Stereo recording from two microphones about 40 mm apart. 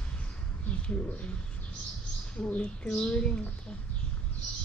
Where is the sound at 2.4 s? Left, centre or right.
Left.